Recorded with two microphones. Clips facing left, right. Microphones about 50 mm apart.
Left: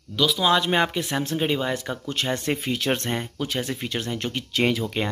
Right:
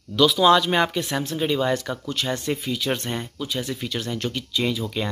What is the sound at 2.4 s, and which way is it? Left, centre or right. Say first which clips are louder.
Speech: left 1 dB; left.